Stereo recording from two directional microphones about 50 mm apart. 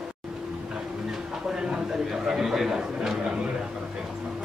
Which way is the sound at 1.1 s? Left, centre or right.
Centre.